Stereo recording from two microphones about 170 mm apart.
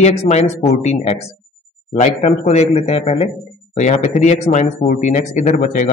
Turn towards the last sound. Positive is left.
turn(degrees=45)  # may be behind; listen again after turning